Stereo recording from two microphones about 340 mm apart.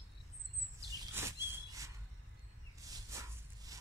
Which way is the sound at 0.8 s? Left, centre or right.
Centre.